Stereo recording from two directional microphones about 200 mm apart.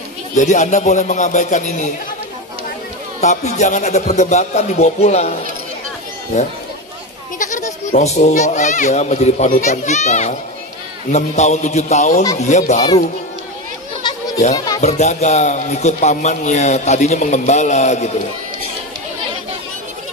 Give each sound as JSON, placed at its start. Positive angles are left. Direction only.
{"t": 0.4, "sound": "speech", "side_deg": 35}
{"t": 3.2, "sound": "speech", "side_deg": 35}
{"t": 7.3, "sound": "speech", "side_deg": 40}
{"t": 14.8, "sound": "speech", "side_deg": 35}